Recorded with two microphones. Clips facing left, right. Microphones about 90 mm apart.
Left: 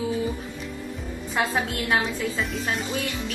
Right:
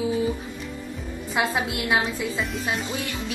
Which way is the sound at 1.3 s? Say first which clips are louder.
Even; 10° right (ahead or behind).